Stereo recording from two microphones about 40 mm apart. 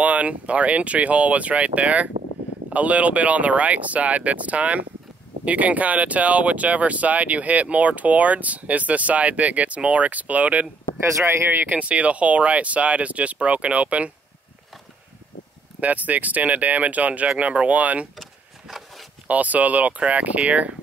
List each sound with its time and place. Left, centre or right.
0.0 s speech: right
11.2 s speech: right
11.7 s speech: right
15.8 s speech: right
18.1 s a sound: centre
19.2 s speech: right